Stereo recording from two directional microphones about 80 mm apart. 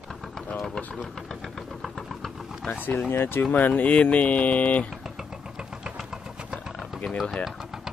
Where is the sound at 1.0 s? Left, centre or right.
Centre.